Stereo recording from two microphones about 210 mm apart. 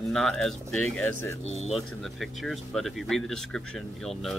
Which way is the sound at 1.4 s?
30° left (ahead or behind).